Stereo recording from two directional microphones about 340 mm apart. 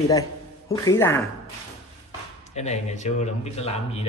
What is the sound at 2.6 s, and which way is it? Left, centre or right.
Speech, centre.